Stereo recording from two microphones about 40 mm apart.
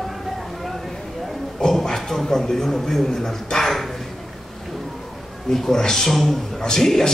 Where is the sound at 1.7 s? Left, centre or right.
Centre.